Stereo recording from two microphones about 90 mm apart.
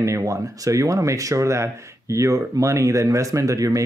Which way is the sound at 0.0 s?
35° right (ahead or behind).